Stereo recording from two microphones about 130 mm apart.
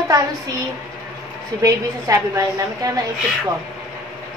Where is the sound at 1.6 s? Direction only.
25° right (ahead or behind).